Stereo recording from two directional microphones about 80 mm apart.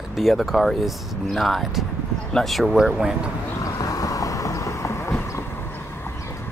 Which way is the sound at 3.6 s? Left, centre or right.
Left.